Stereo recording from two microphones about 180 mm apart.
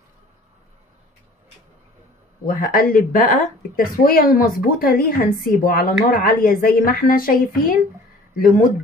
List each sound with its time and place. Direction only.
2.4 s speech: 50° left (ahead or behind)